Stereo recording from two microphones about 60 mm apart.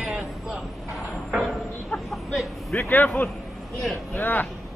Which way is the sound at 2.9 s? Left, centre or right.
Left.